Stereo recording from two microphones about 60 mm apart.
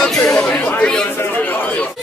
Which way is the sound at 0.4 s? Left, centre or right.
Centre.